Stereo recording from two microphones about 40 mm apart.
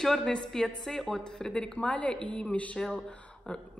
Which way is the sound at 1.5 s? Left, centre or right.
Left.